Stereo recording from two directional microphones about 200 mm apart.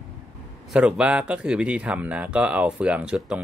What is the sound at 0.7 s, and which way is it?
Speech, 5° right (ahead or behind).